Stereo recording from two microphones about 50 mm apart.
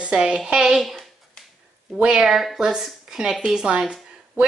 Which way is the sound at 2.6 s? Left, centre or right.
Centre.